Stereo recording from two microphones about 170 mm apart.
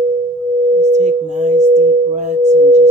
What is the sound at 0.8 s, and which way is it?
Singing bowl, 40° right (ahead or behind).